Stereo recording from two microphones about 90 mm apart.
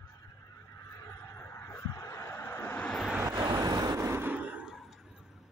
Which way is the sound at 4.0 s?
25° right (ahead or behind).